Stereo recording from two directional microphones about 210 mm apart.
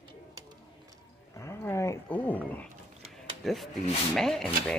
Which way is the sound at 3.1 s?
Centre (ahead or behind).